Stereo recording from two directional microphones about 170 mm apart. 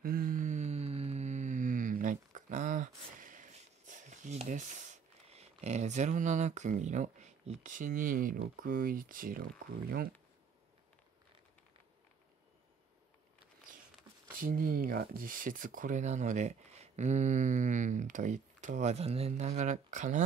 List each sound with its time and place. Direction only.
0.0 s mantra: 60° right (ahead or behind)
14.3 s speech: 55° right (ahead or behind)